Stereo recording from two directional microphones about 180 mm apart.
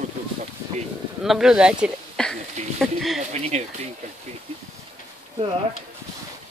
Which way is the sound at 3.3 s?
35° right (ahead or behind).